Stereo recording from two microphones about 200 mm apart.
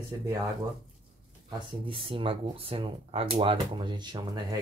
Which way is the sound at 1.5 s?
25° right (ahead or behind).